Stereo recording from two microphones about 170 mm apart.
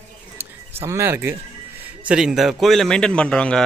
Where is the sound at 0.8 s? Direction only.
15° right (ahead or behind).